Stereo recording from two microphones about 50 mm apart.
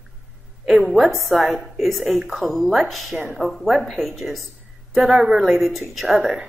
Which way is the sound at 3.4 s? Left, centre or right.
Centre.